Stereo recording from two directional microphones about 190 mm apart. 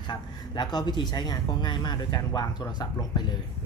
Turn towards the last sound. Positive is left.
turn(degrees=20)  # may be behind; listen again after turning